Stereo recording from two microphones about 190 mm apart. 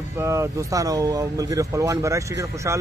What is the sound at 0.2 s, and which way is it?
Speech, 15° right (ahead or behind).